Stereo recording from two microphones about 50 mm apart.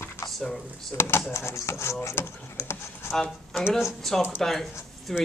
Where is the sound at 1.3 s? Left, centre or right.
Left.